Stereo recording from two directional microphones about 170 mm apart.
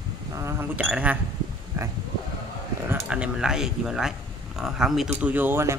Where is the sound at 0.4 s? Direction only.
15° right (ahead or behind).